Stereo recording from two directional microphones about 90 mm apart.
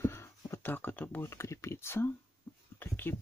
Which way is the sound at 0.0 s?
25° left (ahead or behind).